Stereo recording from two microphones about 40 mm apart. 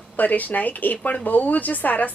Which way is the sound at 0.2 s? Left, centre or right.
Left.